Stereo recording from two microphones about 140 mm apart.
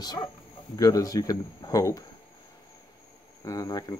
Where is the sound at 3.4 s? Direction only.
25° left (ahead or behind).